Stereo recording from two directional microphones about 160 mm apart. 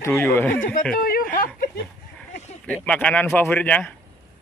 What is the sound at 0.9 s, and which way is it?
Speech, 65° left (ahead or behind).